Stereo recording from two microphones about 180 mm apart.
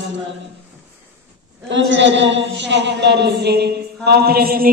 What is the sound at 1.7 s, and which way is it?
A man's voice, 90° right.